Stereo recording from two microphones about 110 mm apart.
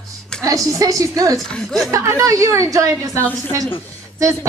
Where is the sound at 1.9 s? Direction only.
30° right (ahead or behind).